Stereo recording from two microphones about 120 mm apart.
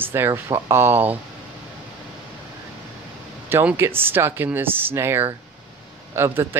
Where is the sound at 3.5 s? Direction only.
15° right (ahead or behind).